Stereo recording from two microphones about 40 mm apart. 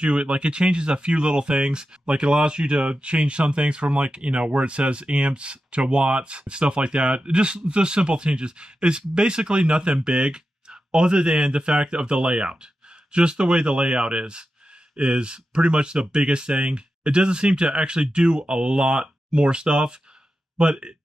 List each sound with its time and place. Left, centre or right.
0.0 s speech: right